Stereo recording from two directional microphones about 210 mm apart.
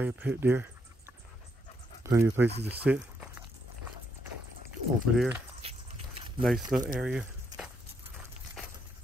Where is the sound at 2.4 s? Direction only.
50° right (ahead or behind).